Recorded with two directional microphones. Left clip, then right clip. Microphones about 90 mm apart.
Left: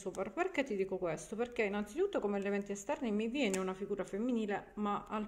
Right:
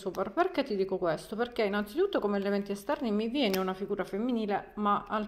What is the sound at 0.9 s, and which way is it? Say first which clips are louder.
Speech: right 7 dB; 45° right (ahead or behind).